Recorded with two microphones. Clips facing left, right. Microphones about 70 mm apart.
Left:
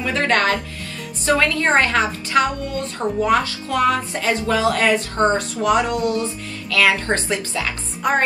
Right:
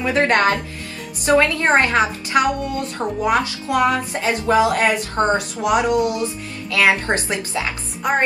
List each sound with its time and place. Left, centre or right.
0.0 s speech: right
8.0 s music: centre